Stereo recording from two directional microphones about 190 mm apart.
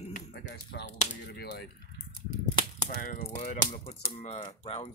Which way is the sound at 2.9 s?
50° left (ahead or behind).